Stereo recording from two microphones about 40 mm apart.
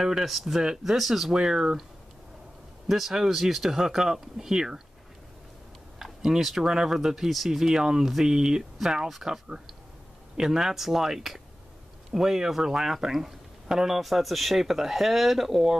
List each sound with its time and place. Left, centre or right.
0.0 s speech: centre
1.3 s speech: centre
2.9 s speech: centre
5.9 s speech: centre